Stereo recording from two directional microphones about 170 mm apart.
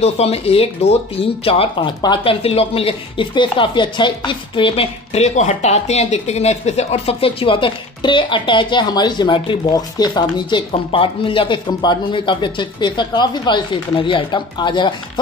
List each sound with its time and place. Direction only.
0.0 s speech: 35° left (ahead or behind)